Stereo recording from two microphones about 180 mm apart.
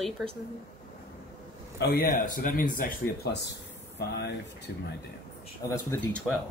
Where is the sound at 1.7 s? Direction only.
55° left (ahead or behind).